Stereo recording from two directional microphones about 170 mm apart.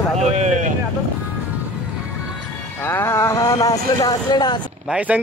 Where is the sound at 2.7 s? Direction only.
15° left (ahead or behind).